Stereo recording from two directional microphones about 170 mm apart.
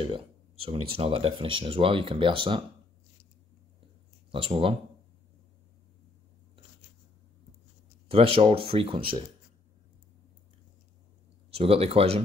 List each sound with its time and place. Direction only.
0.0 s speech: 30° right (ahead or behind)
4.3 s speech: 30° right (ahead or behind)
8.1 s speech: 35° right (ahead or behind)
11.5 s speech: 35° right (ahead or behind)